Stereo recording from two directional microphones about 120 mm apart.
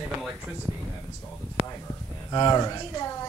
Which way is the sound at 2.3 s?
35° left (ahead or behind).